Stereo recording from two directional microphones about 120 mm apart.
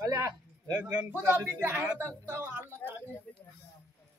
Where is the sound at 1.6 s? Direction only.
15° right (ahead or behind).